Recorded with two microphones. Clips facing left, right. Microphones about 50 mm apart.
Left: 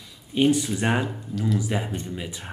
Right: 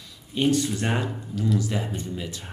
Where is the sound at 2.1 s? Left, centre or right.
Centre.